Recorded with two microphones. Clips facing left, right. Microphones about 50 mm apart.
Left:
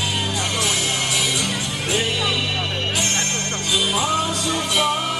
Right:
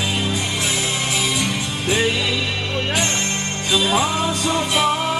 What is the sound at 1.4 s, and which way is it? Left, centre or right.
Music, right.